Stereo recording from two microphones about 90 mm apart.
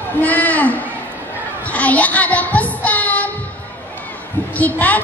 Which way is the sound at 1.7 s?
15° left (ahead or behind).